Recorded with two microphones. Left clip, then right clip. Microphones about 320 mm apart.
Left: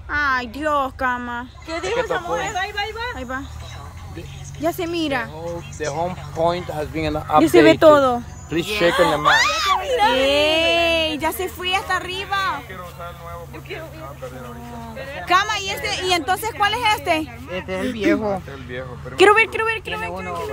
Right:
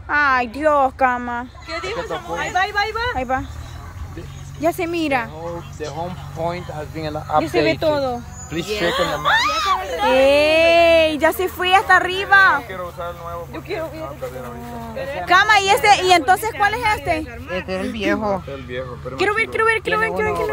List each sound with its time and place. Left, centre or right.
0.1 s speech: centre
1.7 s speech: centre
2.6 s speech: centre
3.2 s speech: centre
4.6 s speech: centre
5.4 s speech: centre
6.3 s speech: left
7.4 s speech: centre
8.5 s speech: left
10.1 s speech: centre
15.0 s speech: right
15.2 s speech: centre
18.7 s speech: centre